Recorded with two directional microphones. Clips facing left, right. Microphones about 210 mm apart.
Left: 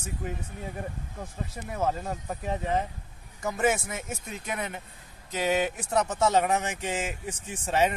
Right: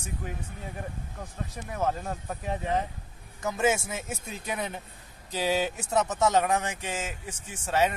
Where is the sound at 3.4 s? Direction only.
5° right (ahead or behind).